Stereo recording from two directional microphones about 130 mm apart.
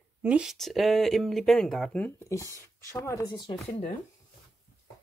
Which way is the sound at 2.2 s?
25° left (ahead or behind).